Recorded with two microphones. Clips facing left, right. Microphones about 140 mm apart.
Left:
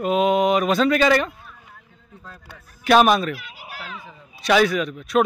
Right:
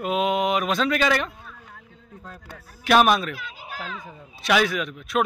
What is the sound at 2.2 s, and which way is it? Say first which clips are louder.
Speech: right 1 dB; 35° right (ahead or behind).